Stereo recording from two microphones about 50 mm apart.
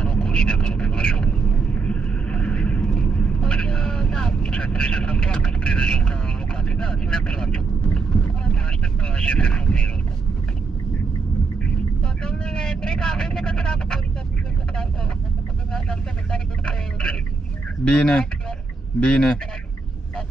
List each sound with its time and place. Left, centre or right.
0.0 s vehicle: centre
11.6 s vehicle: centre
15.7 s vehicle: centre
17.8 s speech: centre